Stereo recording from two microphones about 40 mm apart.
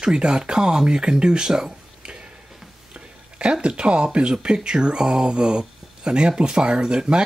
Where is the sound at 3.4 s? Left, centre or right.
Right.